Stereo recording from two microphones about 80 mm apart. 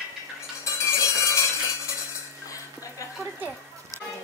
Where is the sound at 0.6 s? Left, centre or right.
Left.